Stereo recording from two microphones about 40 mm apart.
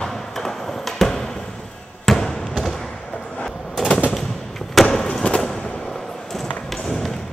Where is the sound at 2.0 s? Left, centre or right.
Centre.